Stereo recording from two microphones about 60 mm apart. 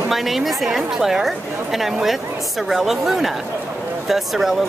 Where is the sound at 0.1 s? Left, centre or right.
Centre.